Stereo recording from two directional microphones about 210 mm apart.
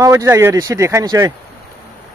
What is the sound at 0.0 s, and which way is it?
Speech, 15° right (ahead or behind).